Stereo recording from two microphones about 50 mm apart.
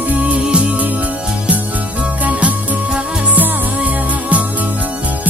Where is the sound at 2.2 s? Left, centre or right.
Right.